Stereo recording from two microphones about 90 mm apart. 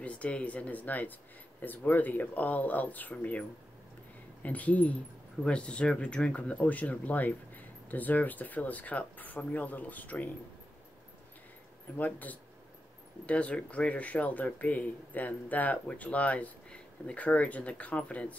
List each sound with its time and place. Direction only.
0.0 s speech: 15° left (ahead or behind)
12.0 s speech: 20° left (ahead or behind)